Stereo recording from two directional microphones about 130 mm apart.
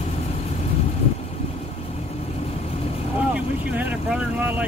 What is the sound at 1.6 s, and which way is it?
Vehicle, 55° left (ahead or behind).